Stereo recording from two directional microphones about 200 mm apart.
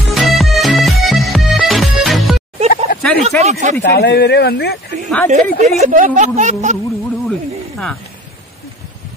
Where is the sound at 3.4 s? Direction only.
35° right (ahead or behind).